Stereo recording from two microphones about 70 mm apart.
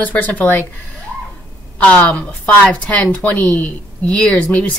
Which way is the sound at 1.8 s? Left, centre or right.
Centre.